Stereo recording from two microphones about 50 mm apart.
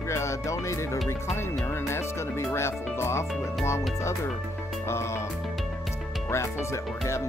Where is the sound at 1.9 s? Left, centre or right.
Left.